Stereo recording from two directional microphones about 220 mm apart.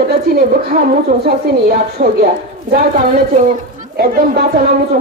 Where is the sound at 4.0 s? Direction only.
45° right (ahead or behind).